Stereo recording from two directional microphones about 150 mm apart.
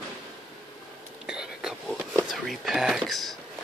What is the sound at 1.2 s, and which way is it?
Whispering, 5° right (ahead or behind).